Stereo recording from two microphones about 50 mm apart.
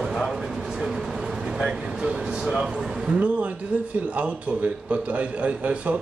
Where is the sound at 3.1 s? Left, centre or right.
Right.